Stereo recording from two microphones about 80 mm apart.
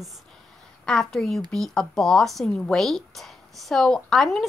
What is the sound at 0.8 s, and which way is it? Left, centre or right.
A woman's voice, centre.